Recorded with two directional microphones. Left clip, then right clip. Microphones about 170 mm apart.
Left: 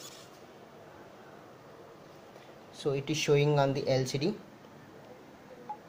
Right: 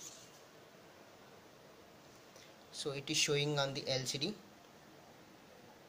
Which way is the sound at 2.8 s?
5° left (ahead or behind).